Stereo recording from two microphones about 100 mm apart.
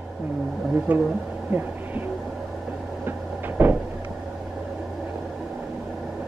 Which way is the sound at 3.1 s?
20° right (ahead or behind).